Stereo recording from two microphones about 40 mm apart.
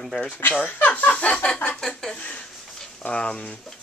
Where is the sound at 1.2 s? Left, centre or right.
Left.